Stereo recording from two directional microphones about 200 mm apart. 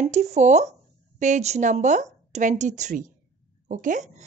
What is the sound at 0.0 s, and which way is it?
A woman's voice, 35° right (ahead or behind).